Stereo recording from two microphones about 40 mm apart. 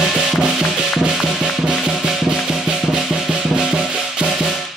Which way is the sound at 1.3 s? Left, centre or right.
Centre.